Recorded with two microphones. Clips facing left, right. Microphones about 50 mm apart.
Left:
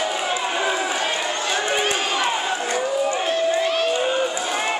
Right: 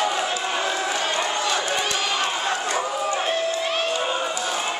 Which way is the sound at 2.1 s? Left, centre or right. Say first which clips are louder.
Left 2 dB; centre.